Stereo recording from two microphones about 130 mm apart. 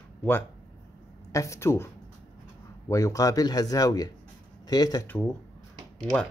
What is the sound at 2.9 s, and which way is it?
Speech, 25° left (ahead or behind).